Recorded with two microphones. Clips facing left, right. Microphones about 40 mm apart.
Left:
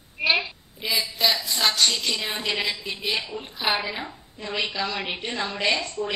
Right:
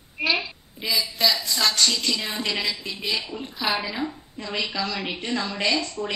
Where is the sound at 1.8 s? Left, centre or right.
Left.